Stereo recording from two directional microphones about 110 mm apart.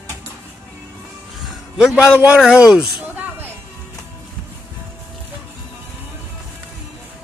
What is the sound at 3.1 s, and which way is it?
Music, 20° right (ahead or behind).